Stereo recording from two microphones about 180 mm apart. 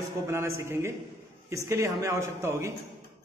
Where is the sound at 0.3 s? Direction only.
15° right (ahead or behind).